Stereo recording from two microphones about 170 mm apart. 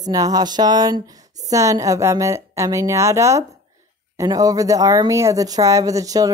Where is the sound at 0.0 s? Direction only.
20° right (ahead or behind).